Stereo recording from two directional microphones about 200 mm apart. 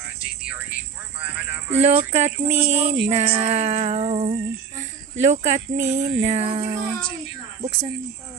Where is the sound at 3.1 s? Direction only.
30° right (ahead or behind).